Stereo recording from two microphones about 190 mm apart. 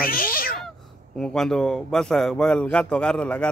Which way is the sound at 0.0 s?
50° left (ahead or behind).